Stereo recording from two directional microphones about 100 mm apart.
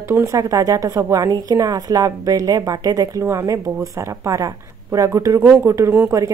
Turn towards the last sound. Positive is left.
turn(degrees=-25)  # may be behind; listen again after turning